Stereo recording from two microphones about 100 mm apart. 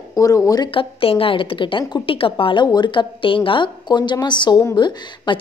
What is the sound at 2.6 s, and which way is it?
A woman's voice, 50° left (ahead or behind).